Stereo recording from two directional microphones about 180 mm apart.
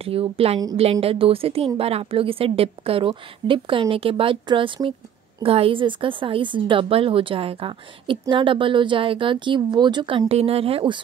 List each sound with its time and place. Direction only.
0.0 s a woman's voice: 30° right (ahead or behind)